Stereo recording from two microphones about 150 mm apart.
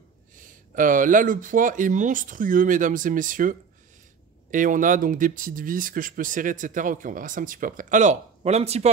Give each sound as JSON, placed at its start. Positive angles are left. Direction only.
{"t": 0.4, "sound": "speech", "side_deg": -60}